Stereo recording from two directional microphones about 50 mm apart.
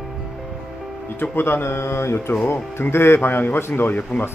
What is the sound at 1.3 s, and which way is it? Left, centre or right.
Speech, left.